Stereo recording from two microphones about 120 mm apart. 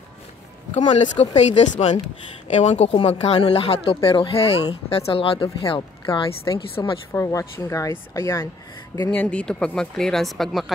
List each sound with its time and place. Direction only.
1.1 s a woman's voice: 65° left (ahead or behind); by 6.8 s 45° left (ahead or behind)
7.1 s speech: 25° left (ahead or behind)
9.0 s speech: 10° left (ahead or behind)